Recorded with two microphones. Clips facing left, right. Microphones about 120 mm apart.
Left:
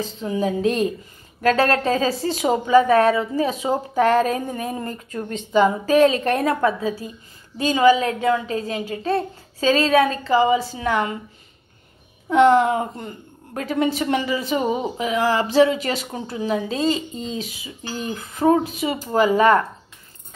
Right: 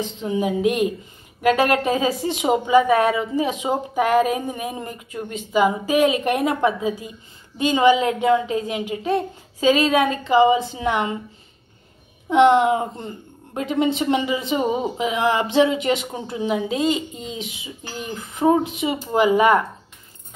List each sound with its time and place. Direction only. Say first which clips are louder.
0.0 s a woman's voice: even; 20° right (ahead or behind)
12.3 s a woman's voice: even; 25° right (ahead or behind)